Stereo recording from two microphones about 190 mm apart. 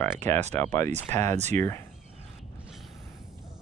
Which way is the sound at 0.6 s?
15° left (ahead or behind).